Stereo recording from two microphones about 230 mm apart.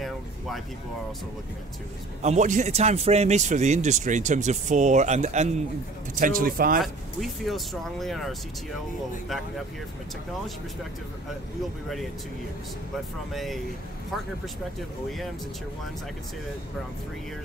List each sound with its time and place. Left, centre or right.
2.2 s speech: right
6.8 s speech: centre
13.3 s speech: centre